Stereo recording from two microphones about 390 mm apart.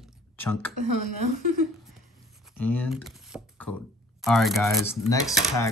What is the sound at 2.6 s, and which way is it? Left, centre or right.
Speech, centre.